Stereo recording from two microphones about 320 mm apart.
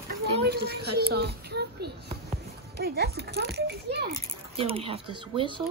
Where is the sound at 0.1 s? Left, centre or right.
Right.